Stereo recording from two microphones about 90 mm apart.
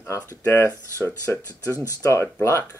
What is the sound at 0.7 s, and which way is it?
Speech, 30° right (ahead or behind).